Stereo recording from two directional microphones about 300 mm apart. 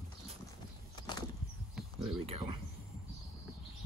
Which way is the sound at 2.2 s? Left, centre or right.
Centre.